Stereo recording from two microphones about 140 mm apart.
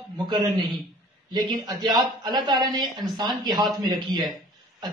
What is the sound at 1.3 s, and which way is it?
A woman's voice, 30° right (ahead or behind).